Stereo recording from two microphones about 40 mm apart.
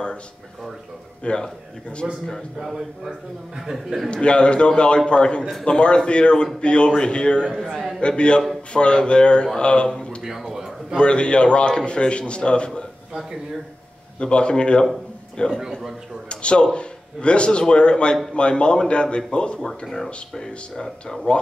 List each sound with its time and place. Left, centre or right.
1.2 s speech: left
2.6 s a man's voice: centre
3.7 s a man's voice: centre
4.1 s speech: left
10.2 s speech: centre
11.0 s speech: left
14.2 s speech: left